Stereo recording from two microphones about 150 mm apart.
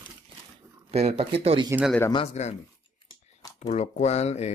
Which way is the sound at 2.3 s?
50° left (ahead or behind).